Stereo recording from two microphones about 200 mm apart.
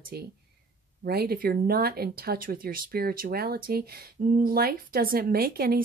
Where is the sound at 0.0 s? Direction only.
50° right (ahead or behind).